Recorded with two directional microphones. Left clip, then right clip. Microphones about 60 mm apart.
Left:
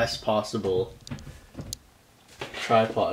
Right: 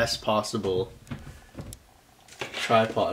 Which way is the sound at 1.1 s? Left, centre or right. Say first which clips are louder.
Even; right.